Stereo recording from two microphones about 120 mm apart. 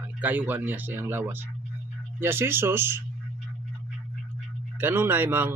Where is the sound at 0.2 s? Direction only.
15° right (ahead or behind).